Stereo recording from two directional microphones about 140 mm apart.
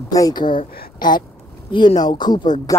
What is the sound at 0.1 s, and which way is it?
A woman's voice, 30° left (ahead or behind).